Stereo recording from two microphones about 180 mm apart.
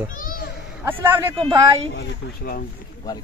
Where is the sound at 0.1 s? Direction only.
50° left (ahead or behind).